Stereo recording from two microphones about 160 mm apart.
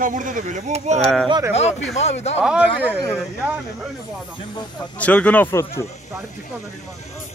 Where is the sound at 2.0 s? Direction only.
45° left (ahead or behind).